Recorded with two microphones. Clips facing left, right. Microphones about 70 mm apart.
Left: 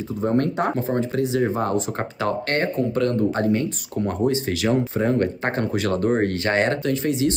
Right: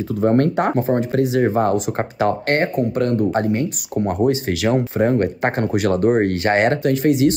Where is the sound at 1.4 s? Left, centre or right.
Right.